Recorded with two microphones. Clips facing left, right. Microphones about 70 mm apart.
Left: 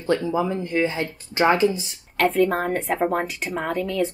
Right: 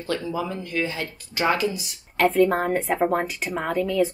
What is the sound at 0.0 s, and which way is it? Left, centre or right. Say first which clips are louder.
Speech: left 5 dB; left.